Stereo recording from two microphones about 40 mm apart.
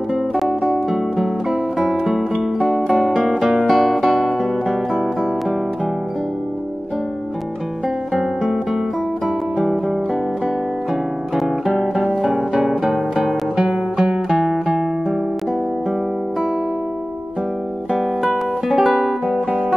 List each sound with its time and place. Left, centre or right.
0.7 s music: centre
3.6 s guitar: centre
4.6 s music: centre
11.3 s guitar: centre
11.9 s music: centre
18.7 s music: centre